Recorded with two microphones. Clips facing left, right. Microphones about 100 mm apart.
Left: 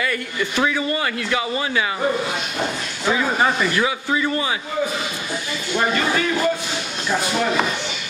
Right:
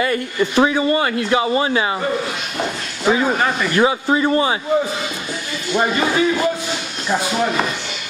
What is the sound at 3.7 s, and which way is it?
Speech, 30° right (ahead or behind).